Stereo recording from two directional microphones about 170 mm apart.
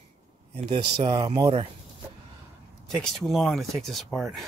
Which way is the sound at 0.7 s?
30° right (ahead or behind).